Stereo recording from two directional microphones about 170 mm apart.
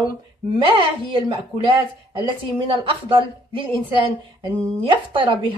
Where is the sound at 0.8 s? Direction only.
30° right (ahead or behind).